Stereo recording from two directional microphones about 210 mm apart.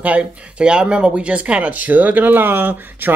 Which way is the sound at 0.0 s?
5° right (ahead or behind).